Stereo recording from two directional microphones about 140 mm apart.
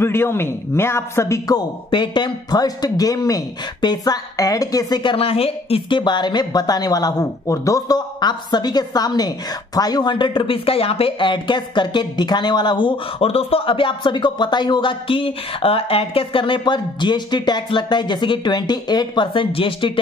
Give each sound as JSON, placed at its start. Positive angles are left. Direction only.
{"t": 0.0, "sound": "speech", "side_deg": 15}
{"t": 1.9, "sound": "a woman's voice", "side_deg": 35}
{"t": 5.1, "sound": "a woman's voice", "side_deg": 45}